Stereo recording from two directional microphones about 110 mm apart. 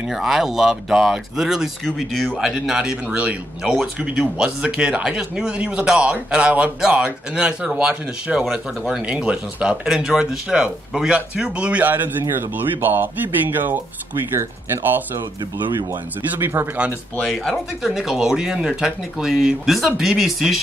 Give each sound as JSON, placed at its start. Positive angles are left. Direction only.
{"t": 0.1, "sound": "speech", "side_deg": 0}
{"t": 16.3, "sound": "speech", "side_deg": -20}
{"t": 17.2, "sound": "speech", "side_deg": 0}